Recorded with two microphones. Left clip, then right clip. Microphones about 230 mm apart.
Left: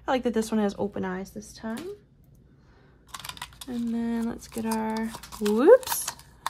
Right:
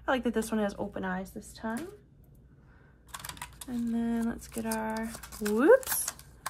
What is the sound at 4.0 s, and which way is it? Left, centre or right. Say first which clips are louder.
Speech: even; left.